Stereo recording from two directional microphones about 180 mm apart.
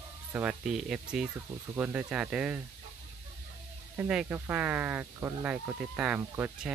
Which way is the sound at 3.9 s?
10° right (ahead or behind).